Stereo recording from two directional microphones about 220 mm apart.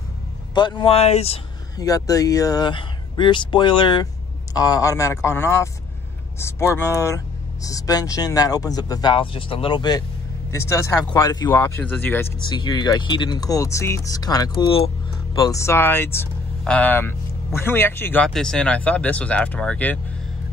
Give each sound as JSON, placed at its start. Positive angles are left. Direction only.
{"t": 0.6, "sound": "speech", "side_deg": 20}
{"t": 1.8, "sound": "speech", "side_deg": 15}
{"t": 12.4, "sound": "speech", "side_deg": 20}